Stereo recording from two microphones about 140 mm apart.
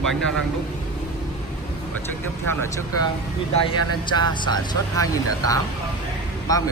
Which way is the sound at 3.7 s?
35° left (ahead or behind).